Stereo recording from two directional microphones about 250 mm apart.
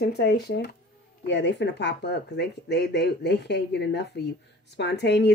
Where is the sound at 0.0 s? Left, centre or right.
Left.